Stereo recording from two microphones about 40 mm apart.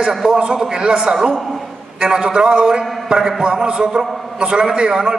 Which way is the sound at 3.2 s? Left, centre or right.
Centre.